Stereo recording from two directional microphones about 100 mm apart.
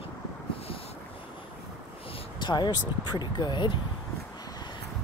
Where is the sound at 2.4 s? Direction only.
50° left (ahead or behind).